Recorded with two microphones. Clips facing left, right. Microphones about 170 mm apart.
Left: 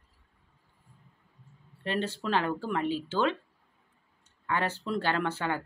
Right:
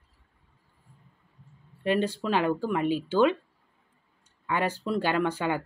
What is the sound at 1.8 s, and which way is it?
Speech, 15° right (ahead or behind).